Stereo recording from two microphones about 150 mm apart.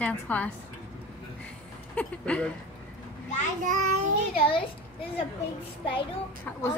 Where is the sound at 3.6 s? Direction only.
60° right (ahead or behind).